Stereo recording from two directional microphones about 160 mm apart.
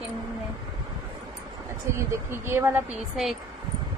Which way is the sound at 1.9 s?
15° right (ahead or behind).